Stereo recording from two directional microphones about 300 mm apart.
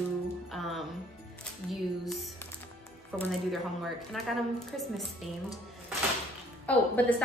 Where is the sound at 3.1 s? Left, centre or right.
Centre.